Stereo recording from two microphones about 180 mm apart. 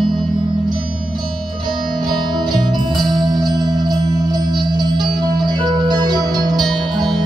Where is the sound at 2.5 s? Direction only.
25° right (ahead or behind).